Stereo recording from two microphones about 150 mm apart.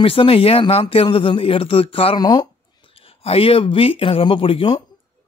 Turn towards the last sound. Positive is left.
turn(degrees=35)  # may be behind; listen again after turning